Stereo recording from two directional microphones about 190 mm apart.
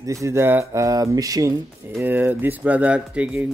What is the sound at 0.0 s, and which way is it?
Speech, 15° right (ahead or behind).